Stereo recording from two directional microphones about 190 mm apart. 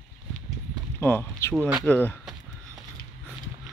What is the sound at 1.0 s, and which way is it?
Speech, 10° left (ahead or behind).